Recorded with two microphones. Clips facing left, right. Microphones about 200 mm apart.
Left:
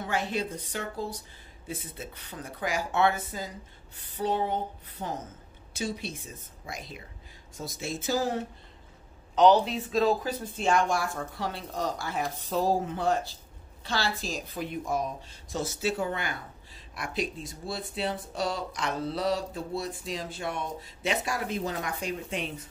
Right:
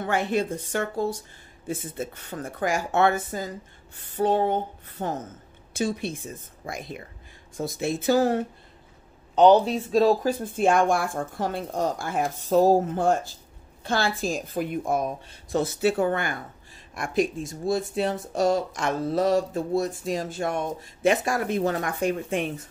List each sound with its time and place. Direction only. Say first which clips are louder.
0.0 s speech: right 6 dB; 55° right (ahead or behind)
10.2 s speech: right 7 dB; 50° right (ahead or behind)